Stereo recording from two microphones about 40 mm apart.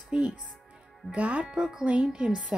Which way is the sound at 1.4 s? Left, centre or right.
Centre.